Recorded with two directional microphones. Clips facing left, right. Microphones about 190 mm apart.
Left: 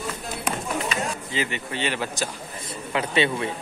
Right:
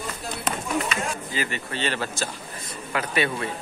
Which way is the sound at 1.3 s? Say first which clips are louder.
Left 1 dB; 20° left (ahead or behind).